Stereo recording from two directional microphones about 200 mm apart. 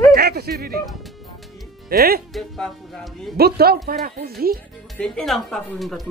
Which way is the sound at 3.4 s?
50° right (ahead or behind).